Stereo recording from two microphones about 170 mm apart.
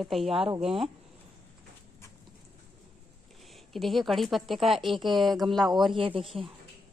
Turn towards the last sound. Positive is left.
turn(degrees=-30)  # may be behind; listen again after turning